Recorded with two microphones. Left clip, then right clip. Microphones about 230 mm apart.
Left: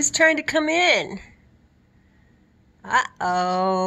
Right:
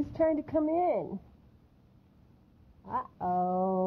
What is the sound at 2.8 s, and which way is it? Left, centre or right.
Speech, centre.